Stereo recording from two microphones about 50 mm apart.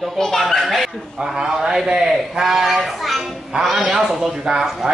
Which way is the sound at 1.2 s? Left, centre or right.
Centre.